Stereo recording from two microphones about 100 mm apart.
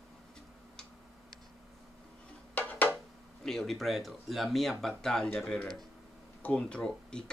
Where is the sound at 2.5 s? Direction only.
15° left (ahead or behind).